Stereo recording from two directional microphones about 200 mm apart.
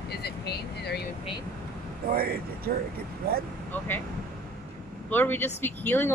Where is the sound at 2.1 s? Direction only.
50° right (ahead or behind).